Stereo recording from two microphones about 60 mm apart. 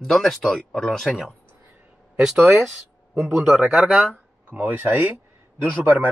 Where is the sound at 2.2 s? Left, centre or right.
Centre.